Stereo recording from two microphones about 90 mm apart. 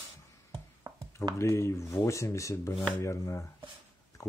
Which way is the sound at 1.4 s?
30° left (ahead or behind).